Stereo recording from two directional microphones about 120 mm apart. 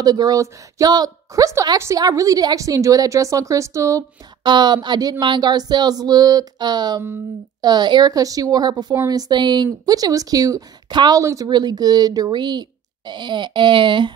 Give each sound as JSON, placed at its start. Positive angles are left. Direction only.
{"t": 0.0, "sound": "a woman's voice", "side_deg": -35}
{"t": 4.4, "sound": "a woman's voice", "side_deg": -40}